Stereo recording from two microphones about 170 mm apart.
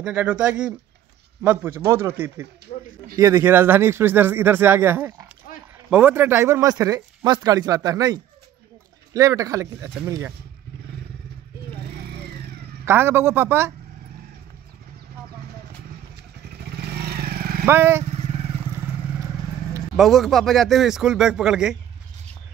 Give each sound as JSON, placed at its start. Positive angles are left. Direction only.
{"t": 0.0, "sound": "speech", "side_deg": -10}
{"t": 2.7, "sound": "a sound", "side_deg": 40}
{"t": 3.2, "sound": "speech", "side_deg": -15}
{"t": 12.8, "sound": "speech", "side_deg": -15}
{"t": 16.7, "sound": "vehicle", "side_deg": -70}
{"t": 17.6, "sound": "speech", "side_deg": -15}
{"t": 20.0, "sound": "speech", "side_deg": 0}